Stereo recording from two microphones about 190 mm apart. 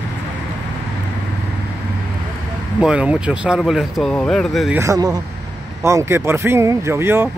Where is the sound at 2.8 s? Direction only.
5° right (ahead or behind).